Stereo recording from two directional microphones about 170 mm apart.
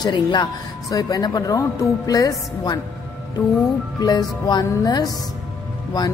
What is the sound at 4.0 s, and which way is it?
Speech, 25° left (ahead or behind).